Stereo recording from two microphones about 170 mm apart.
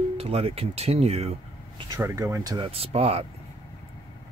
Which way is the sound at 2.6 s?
35° right (ahead or behind).